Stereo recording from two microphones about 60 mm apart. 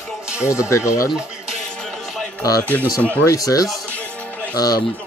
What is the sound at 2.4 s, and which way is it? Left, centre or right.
Speech, left.